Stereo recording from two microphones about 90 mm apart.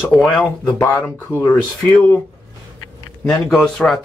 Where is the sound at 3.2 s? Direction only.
5° left (ahead or behind).